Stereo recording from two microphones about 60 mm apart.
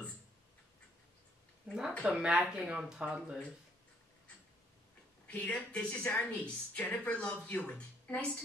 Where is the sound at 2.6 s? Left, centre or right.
Centre.